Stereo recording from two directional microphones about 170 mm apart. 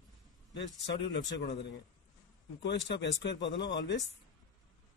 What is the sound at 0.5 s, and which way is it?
A man's voice, 90° left.